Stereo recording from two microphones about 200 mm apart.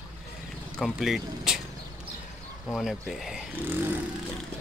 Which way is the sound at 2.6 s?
Centre (ahead or behind).